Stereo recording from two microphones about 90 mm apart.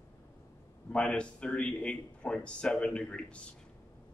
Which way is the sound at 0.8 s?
10° left (ahead or behind).